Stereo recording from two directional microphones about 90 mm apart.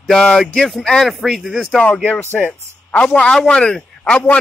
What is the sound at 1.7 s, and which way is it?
A man's voice, 10° left (ahead or behind).